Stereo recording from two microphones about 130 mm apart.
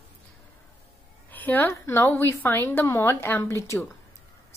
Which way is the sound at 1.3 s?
15° left (ahead or behind).